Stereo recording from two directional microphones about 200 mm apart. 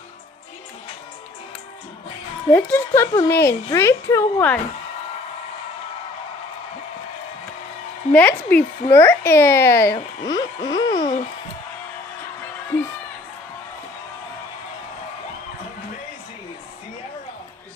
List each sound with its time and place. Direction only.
2.5 s speech: 10° left (ahead or behind)
8.1 s speech: 10° left (ahead or behind)
10.2 s a sound: 20° left (ahead or behind)